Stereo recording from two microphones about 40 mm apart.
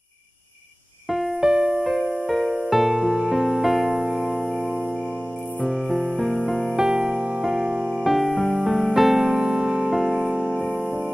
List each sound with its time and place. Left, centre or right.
1.4 s music: centre
1.8 s music: centre
5.6 s music: centre
6.7 s music: centre
8.0 s music: centre